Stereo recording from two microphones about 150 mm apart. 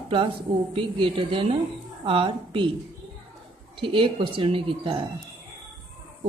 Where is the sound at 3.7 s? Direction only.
35° right (ahead or behind).